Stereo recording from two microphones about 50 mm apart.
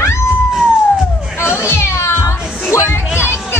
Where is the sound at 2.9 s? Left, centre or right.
Left.